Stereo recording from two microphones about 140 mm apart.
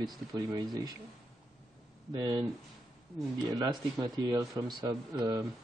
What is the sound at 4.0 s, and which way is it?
Speech, 30° right (ahead or behind).